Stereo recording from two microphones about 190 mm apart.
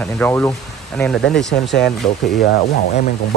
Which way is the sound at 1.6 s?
65° left (ahead or behind).